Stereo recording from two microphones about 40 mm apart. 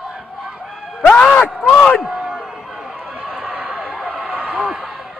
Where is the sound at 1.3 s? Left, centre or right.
Left.